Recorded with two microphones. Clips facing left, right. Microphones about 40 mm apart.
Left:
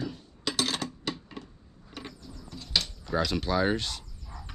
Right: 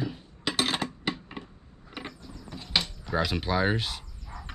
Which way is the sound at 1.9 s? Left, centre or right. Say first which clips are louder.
Right 2 dB; right.